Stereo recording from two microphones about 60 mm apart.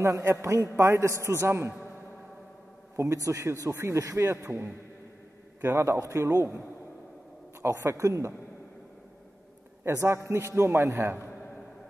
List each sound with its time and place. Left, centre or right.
0.0 s a man's voice: right
0.3 s a man's voice: right
3.0 s a man's voice: right
7.6 s a man's voice: right
9.8 s a man's voice: right
11.0 s a man's voice: right